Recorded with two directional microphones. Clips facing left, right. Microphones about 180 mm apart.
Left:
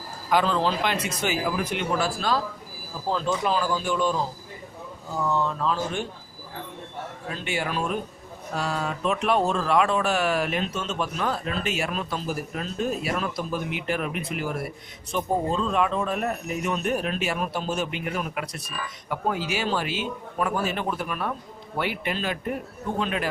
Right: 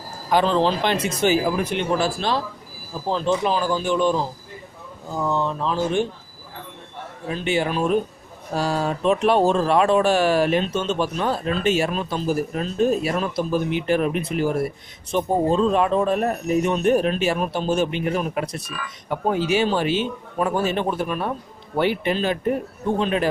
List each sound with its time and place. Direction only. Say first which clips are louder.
0.3 s a man's voice: right 4 dB; 25° right (ahead or behind)
7.2 s a man's voice: right 8 dB; 20° right (ahead or behind)
8.5 s a man's voice: right 6 dB; 35° right (ahead or behind)